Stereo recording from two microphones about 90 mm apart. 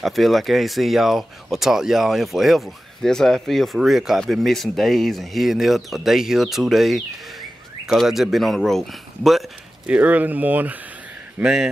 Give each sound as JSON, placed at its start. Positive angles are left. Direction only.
{"t": 0.0, "sound": "speech", "side_deg": 0}
{"t": 9.8, "sound": "speech", "side_deg": -15}
{"t": 11.4, "sound": "speech", "side_deg": -5}